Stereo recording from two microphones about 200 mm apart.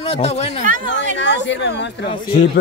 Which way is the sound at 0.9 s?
65° left (ahead or behind).